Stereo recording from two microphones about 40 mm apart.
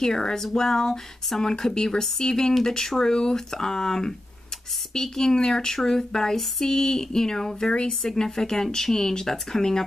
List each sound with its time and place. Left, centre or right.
0.0 s speech: centre
7.7 s speech: left
8.1 s speech: centre